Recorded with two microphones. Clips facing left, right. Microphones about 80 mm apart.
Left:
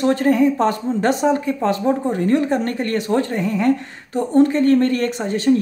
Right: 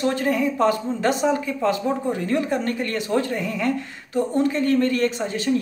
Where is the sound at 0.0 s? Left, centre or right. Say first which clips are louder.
Left 6 dB; left.